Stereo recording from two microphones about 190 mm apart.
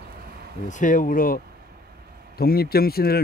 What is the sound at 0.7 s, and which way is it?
Speech, 45° left (ahead or behind).